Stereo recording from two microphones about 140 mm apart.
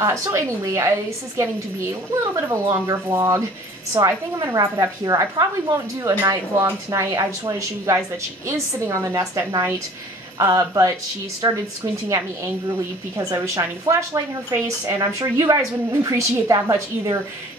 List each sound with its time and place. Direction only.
0.0 s a woman's voice: 20° right (ahead or behind)
10.4 s a woman's voice: 25° right (ahead or behind)